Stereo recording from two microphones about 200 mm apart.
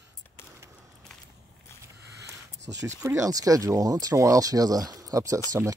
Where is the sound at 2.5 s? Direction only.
60° right (ahead or behind).